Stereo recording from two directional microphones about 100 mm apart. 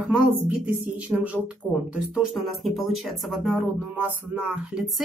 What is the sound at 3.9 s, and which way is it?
Music, 15° right (ahead or behind).